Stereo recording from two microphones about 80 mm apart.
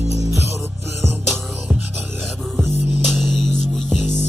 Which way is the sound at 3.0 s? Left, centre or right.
Centre.